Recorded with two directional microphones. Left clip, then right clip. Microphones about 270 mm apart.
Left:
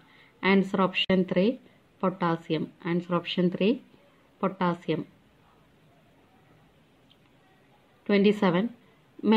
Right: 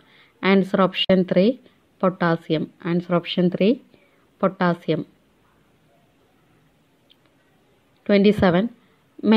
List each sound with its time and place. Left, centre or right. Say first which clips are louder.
0.2 s a woman's voice: right 5 dB; right
8.0 s a woman's voice: right 6 dB; right